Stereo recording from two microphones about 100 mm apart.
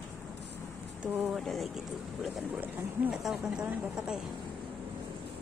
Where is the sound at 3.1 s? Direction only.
5° right (ahead or behind).